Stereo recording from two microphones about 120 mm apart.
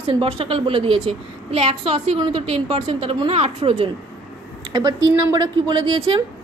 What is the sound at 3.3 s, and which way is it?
Speech, 60° right (ahead or behind).